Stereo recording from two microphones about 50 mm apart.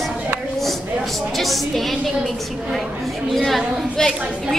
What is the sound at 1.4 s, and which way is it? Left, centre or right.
Speech, centre.